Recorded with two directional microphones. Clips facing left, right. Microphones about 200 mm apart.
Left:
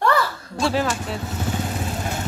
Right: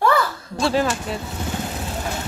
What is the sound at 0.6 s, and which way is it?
Speech, 10° left (ahead or behind).